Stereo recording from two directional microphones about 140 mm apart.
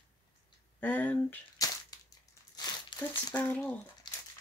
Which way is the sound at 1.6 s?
25° left (ahead or behind).